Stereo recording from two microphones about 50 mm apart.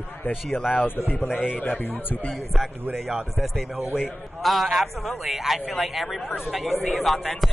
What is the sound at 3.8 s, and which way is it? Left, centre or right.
Speech, left.